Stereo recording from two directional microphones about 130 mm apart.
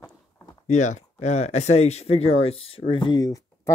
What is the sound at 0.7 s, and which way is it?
Speech, 65° left (ahead or behind).